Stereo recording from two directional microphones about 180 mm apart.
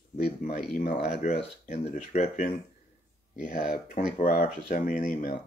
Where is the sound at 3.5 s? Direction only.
45° left (ahead or behind).